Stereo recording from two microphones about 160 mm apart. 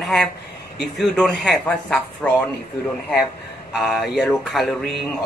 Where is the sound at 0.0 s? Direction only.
Centre (ahead or behind).